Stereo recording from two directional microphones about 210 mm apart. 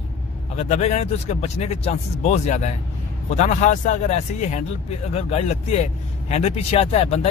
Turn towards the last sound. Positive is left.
turn(degrees=30)  # may be behind; listen again after turning